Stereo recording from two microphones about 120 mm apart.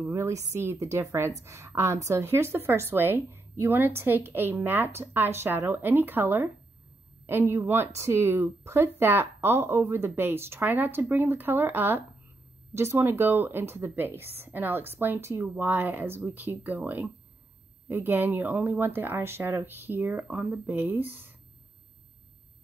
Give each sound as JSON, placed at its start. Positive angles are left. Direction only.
{"t": 0.0, "sound": "speech", "side_deg": -20}